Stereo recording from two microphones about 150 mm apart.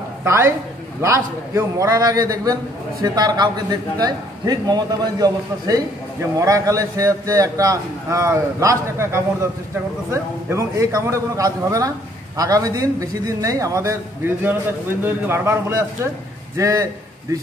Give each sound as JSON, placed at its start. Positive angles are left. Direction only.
{"t": 0.2, "sound": "a man's voice", "side_deg": -15}
{"t": 10.5, "sound": "a man's voice", "side_deg": -20}